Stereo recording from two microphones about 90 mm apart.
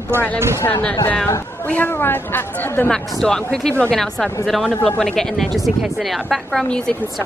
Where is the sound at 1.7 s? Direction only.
20° left (ahead or behind).